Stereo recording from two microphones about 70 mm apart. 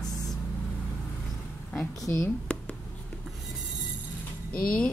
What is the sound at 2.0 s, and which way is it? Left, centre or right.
Speech, left.